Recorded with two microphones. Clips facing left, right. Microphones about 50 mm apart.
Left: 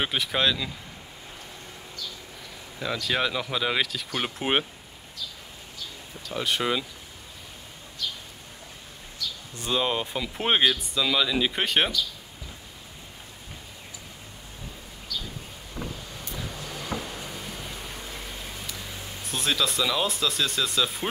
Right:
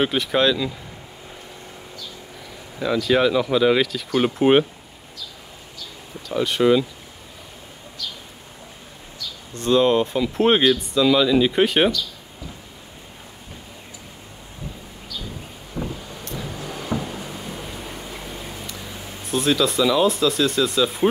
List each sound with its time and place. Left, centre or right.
0.0 s speech: centre
2.8 s speech: centre
6.2 s speech: centre
9.6 s speech: centre
16.6 s a sound: centre
18.7 s speech: centre